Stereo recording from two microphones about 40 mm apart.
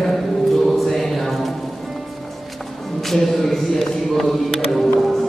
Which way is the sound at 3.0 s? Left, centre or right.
Centre.